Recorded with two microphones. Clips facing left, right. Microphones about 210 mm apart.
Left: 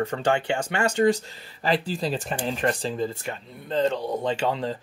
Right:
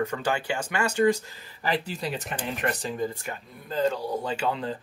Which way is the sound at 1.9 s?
30° left (ahead or behind).